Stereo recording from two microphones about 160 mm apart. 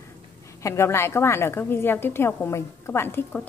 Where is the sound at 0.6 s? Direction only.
15° left (ahead or behind).